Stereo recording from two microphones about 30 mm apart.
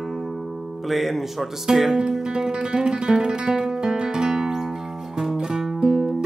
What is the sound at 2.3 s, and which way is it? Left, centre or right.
Music, right.